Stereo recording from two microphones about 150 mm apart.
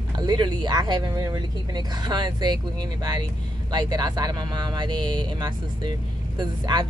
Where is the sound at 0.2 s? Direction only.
30° right (ahead or behind).